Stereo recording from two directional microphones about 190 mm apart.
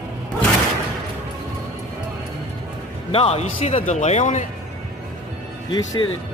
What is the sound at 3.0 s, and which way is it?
A man's voice, 30° left (ahead or behind).